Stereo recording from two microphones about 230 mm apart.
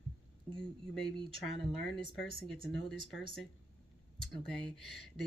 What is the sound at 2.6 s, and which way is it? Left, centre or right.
Speech, left.